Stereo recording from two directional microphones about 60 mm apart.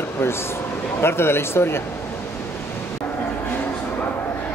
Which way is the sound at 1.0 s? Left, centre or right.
Left.